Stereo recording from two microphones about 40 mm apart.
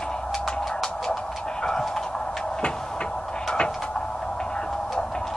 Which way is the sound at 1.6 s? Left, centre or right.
Centre.